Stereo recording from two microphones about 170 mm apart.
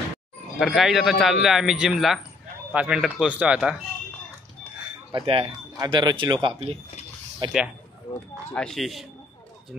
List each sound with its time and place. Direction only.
0.6 s speech: centre (ahead or behind)
5.1 s speech: 30° right (ahead or behind)
8.5 s speech: 5° left (ahead or behind)